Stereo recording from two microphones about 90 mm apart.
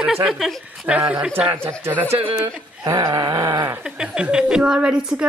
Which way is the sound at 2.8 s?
40° right (ahead or behind).